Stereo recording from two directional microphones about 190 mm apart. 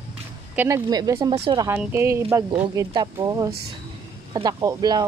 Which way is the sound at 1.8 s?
10° right (ahead or behind).